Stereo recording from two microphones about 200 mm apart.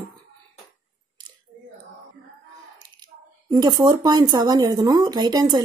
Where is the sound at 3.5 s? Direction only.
20° right (ahead or behind).